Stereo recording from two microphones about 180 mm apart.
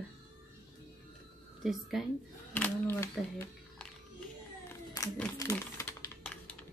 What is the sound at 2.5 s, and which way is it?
Speech, 10° left (ahead or behind).